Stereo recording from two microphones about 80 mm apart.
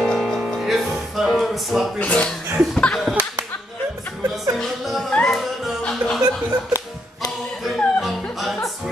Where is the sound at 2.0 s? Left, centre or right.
Centre.